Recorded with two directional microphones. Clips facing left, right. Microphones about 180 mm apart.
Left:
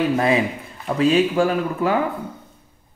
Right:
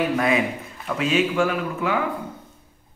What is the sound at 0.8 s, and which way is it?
Speech, 35° left (ahead or behind).